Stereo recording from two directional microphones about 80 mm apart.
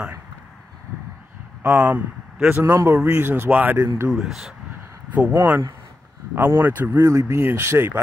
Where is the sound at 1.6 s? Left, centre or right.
Centre.